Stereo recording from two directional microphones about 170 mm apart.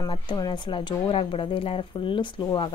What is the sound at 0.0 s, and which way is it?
A woman's voice, 25° left (ahead or behind).